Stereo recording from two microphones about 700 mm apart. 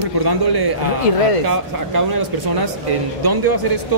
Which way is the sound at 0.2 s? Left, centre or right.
Right.